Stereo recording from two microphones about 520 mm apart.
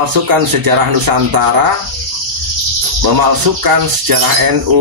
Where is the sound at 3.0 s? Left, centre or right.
Right.